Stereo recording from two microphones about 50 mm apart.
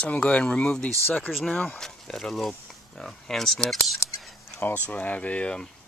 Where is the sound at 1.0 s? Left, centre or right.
Left.